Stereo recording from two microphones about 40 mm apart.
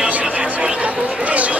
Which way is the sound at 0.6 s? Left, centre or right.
Right.